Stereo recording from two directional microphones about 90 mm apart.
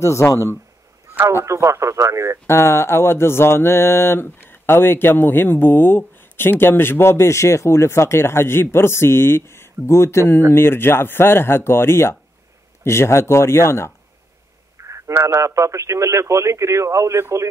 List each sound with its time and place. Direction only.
0.0 s speech: 35° left (ahead or behind)
1.4 s speech: 35° right (ahead or behind)
2.4 s a sound: 30° left (ahead or behind)
12.8 s speech: 30° left (ahead or behind)
14.8 s speech: 35° right (ahead or behind)